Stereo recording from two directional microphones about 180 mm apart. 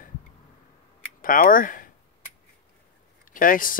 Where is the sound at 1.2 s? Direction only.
50° left (ahead or behind).